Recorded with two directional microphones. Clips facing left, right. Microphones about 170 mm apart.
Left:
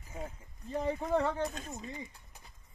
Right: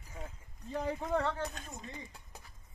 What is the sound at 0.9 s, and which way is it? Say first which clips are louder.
Speech: left 3 dB; 5° left (ahead or behind).